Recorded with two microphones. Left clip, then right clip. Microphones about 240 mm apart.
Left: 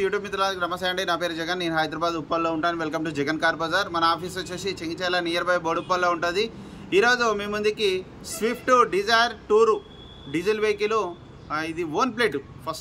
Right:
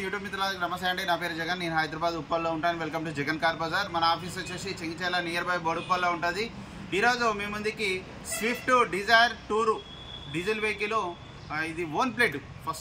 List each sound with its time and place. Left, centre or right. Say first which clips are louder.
0.0 s a man's voice: left 7 dB; centre